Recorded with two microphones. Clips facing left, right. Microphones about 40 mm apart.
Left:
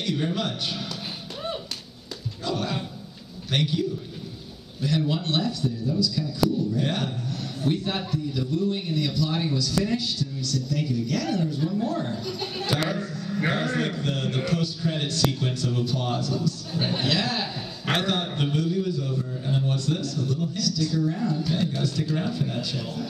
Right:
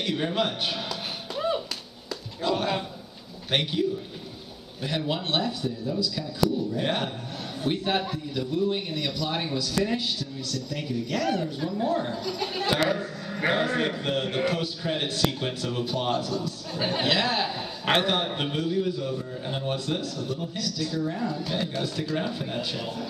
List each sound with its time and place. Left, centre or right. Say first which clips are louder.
0.0 s a man's voice: right 1 dB; right
2.4 s a man's voice: right 3 dB; right
4.8 s a man's voice: left 3 dB; right
12.5 s a sound: right 2 dB; right
12.9 s a man's voice: left 1 dB; right
21.1 s speech: left 3 dB; centre
21.4 s a man's voice: left 3 dB; right